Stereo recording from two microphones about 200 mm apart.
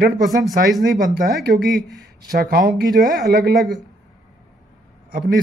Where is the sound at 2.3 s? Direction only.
50° right (ahead or behind).